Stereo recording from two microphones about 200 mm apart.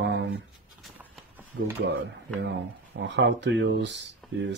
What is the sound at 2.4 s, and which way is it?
Speech, 60° right (ahead or behind).